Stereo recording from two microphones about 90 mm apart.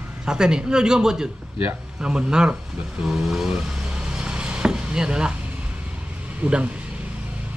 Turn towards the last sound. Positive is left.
turn(degrees=-15)  # may be behind; listen again after turning